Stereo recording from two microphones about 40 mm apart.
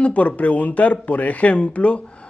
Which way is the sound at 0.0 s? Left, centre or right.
Left.